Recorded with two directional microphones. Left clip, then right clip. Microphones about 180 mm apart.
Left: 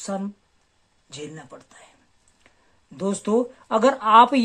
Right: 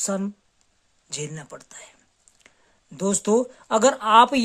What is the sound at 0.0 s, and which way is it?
Speech, 35° right (ahead or behind).